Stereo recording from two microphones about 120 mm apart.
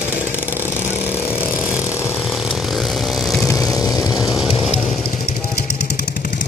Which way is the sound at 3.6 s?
30° left (ahead or behind).